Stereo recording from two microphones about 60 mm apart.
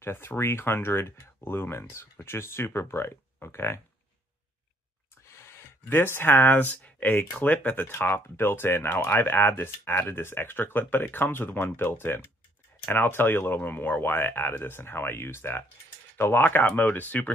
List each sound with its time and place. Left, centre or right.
0.0 s speech: left
5.9 s speech: left